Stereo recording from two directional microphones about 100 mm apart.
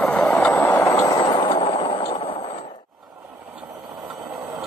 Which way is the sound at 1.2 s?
55° left (ahead or behind).